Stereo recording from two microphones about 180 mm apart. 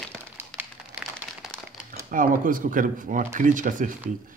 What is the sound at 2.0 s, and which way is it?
Speech, 50° right (ahead or behind).